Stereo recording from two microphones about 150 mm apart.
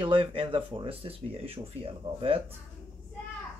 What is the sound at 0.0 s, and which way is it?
Speech, 35° right (ahead or behind).